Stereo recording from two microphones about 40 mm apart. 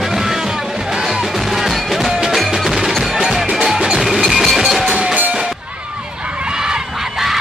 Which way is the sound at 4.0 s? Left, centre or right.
Centre.